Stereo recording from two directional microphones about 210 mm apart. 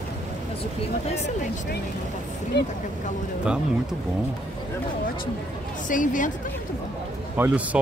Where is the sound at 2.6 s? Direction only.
55° left (ahead or behind).